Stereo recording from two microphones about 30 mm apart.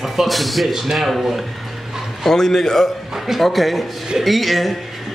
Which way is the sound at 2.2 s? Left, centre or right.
Centre.